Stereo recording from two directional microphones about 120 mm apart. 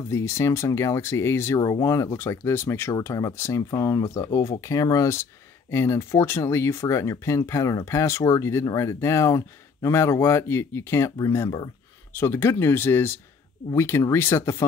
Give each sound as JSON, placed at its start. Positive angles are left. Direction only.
{"t": 0.1, "sound": "speech", "side_deg": 25}